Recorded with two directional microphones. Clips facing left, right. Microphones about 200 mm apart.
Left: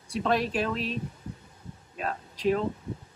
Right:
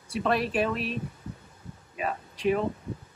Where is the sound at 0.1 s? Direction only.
5° right (ahead or behind).